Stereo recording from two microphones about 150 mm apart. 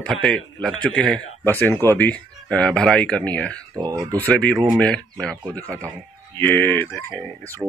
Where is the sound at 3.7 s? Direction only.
25° right (ahead or behind).